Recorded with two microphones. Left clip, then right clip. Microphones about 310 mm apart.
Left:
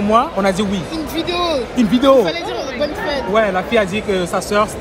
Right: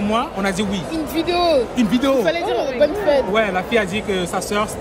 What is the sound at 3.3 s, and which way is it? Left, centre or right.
A man's voice, centre.